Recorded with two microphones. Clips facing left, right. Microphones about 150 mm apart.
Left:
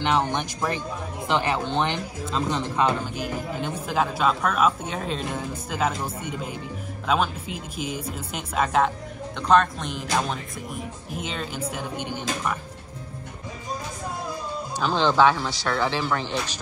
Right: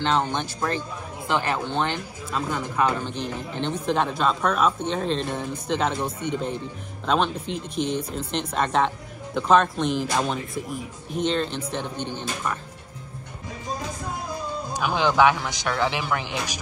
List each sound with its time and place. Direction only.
0.0 s speech: 15° left (ahead or behind)
3.2 s speech: 5° left (ahead or behind)
14.7 s speech: 10° right (ahead or behind)